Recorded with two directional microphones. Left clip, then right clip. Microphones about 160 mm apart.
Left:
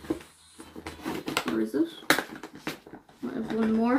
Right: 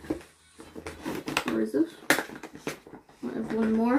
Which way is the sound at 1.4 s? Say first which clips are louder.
Right 1 dB; 30° right (ahead or behind).